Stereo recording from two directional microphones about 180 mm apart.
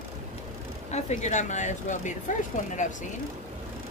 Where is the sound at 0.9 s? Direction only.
40° left (ahead or behind).